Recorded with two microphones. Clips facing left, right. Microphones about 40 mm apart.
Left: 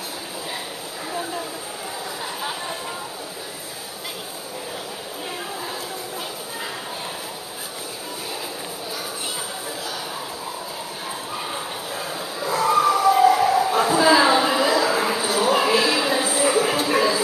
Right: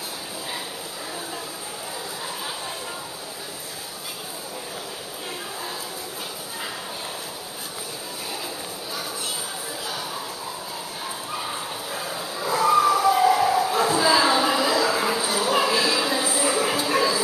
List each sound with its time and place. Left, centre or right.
11.3 s bow-wow: centre